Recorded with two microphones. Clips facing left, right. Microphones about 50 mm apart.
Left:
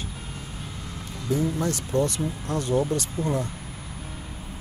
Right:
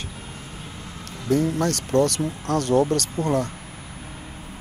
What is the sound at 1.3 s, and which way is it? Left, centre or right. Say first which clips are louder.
Speech: right 4 dB; right.